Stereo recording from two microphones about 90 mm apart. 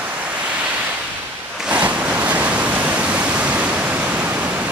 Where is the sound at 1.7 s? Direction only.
15° right (ahead or behind).